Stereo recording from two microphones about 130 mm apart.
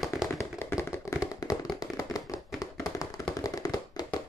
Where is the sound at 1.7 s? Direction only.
25° left (ahead or behind).